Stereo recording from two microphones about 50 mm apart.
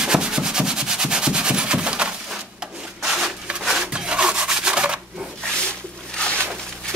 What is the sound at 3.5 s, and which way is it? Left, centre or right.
Rub, centre.